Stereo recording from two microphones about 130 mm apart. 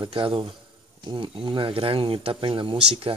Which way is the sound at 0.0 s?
40° right (ahead or behind).